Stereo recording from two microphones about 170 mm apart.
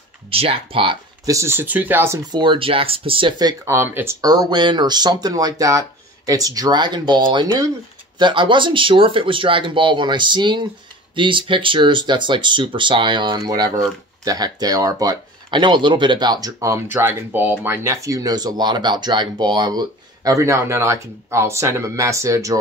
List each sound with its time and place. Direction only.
0.3 s speech: 35° right (ahead or behind)
1.2 s speech: 15° right (ahead or behind)
2.3 s speech: 30° right (ahead or behind)